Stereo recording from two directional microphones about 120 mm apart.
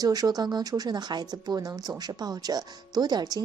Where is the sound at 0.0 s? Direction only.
30° right (ahead or behind).